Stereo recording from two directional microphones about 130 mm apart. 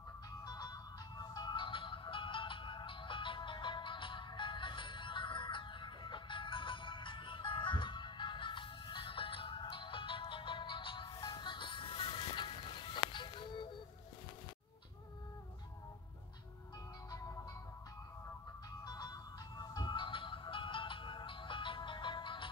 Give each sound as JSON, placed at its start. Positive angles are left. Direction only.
{"t": 0.5, "sound": "music", "side_deg": 30}
{"t": 18.9, "sound": "music", "side_deg": 30}